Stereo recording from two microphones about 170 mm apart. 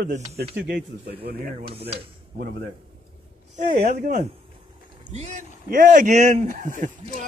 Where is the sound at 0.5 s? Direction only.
80° right.